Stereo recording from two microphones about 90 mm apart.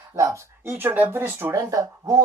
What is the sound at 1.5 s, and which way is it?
Speech, 40° right (ahead or behind).